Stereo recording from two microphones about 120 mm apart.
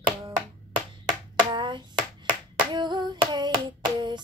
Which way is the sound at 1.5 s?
40° right (ahead or behind).